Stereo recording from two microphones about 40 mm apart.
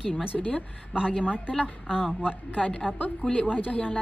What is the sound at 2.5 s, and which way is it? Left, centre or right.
A woman's voice, left.